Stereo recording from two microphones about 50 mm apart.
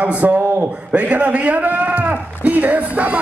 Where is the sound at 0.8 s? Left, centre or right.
Right.